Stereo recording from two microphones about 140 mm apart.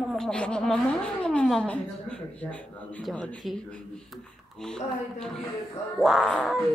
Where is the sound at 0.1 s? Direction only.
5° left (ahead or behind).